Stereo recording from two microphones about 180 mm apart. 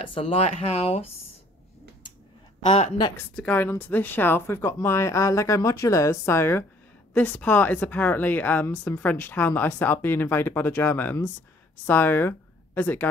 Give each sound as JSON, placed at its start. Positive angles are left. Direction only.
{"t": 0.0, "sound": "speech", "side_deg": 30}
{"t": 2.6, "sound": "speech", "side_deg": 40}
{"t": 3.2, "sound": "speech", "side_deg": 10}